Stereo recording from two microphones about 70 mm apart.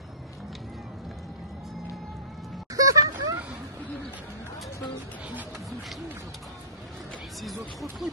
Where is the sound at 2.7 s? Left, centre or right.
Right.